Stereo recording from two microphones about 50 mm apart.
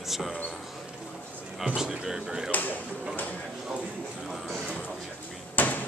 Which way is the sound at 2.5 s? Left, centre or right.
Left.